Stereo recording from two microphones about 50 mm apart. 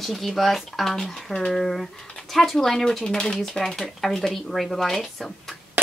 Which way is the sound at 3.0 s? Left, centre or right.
Centre.